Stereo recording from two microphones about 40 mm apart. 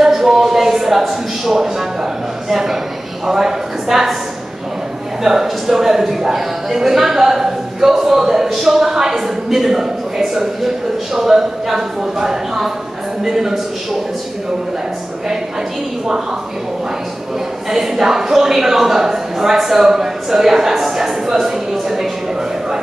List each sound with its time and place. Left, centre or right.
0.0 s a sound: centre
2.5 s speech: centre
5.2 s speech: centre
17.6 s speech: centre